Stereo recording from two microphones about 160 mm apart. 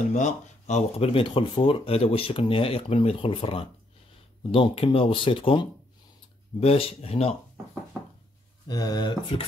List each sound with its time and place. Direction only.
0.1 s speech: 45° left (ahead or behind)
8.6 s speech: 25° left (ahead or behind)